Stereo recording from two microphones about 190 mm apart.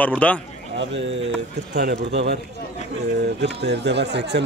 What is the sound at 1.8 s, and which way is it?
Speech, 60° right (ahead or behind).